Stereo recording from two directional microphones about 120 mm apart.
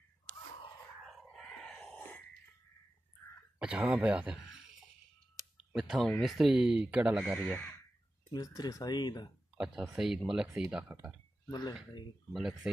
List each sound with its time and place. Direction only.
1.0 s a sound: centre (ahead or behind)
3.5 s a sound: 10° right (ahead or behind)
3.8 s speech: 10° right (ahead or behind)
8.3 s speech: 30° left (ahead or behind)
9.6 s speech: 5° right (ahead or behind)
11.4 s speech: 35° left (ahead or behind)
12.3 s speech: 5° right (ahead or behind)